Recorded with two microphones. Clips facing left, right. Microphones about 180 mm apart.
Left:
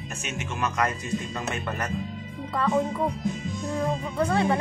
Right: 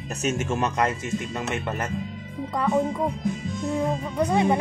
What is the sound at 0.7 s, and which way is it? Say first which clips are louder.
Speech: right 2 dB; 25° right (ahead or behind).